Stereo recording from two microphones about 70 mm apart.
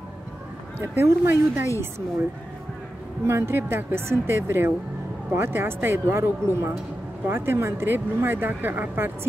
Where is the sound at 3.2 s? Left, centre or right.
Right.